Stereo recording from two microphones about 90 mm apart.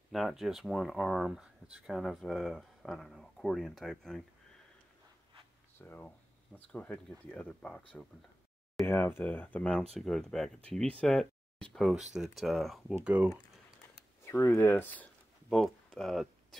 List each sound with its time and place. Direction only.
0.1 s speech: centre (ahead or behind)
5.8 s speech: 20° left (ahead or behind)
8.8 s speech: 25° left (ahead or behind); by 12.8 s centre (ahead or behind)
13.0 s speech: 15° right (ahead or behind)
14.2 s speech: 30° left (ahead or behind)
15.5 s speech: 5° left (ahead or behind)